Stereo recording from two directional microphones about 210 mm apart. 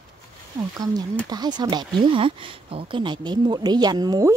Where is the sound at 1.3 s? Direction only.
20° right (ahead or behind).